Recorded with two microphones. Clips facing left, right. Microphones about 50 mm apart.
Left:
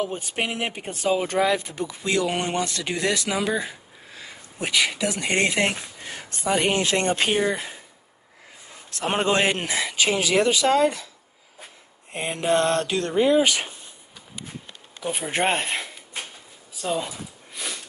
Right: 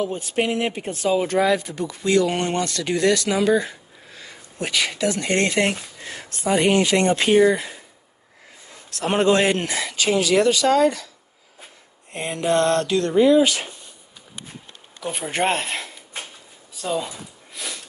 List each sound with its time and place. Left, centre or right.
0.0 s speech: left
6.6 s speech: right
8.9 s speech: left
12.1 s speech: centre
15.0 s speech: centre
16.7 s a sound: centre